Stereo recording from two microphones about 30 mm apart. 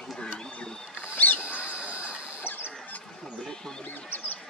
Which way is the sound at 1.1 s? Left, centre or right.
Left.